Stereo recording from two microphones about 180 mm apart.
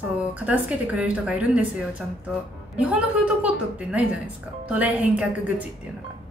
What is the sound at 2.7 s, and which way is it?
A woman's voice, 5° right (ahead or behind).